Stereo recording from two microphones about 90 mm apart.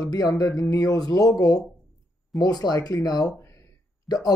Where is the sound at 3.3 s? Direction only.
35° left (ahead or behind).